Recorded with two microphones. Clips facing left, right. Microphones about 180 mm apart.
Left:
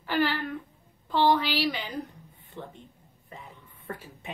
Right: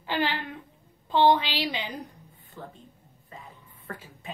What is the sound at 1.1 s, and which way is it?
Speech, 20° right (ahead or behind).